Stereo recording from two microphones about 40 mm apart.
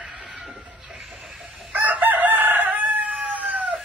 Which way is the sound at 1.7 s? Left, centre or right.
Right.